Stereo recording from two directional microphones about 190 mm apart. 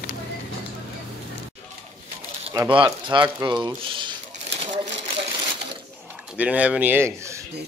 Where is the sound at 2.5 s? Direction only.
25° right (ahead or behind).